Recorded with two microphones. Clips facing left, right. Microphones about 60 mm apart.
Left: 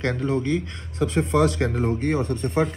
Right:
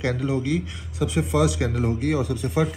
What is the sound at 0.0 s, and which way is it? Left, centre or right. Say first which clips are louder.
A man's voice: left 1 dB; left.